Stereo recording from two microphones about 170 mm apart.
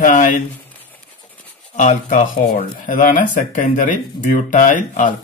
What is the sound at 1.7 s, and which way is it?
Speech, 45° left (ahead or behind).